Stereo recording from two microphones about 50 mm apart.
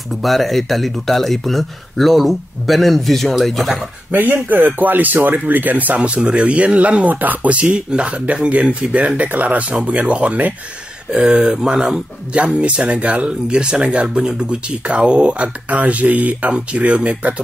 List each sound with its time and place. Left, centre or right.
0.2 s speech: centre
4.1 s speech: right
6.0 s speech: right
11.1 s speech: centre
12.4 s speech: right